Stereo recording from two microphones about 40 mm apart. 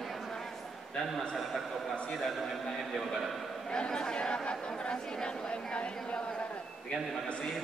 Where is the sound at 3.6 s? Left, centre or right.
Centre.